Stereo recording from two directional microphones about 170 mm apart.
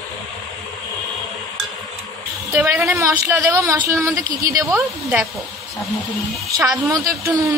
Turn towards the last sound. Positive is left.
turn(degrees=-20)  # may be behind; listen again after turning